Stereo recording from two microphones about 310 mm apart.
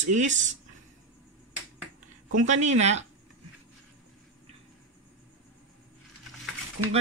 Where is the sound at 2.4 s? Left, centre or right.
Right.